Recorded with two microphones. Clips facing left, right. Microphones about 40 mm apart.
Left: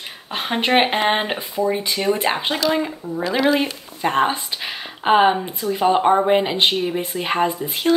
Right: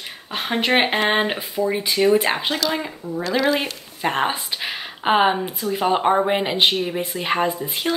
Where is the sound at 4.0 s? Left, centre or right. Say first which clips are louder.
Left 3 dB; centre.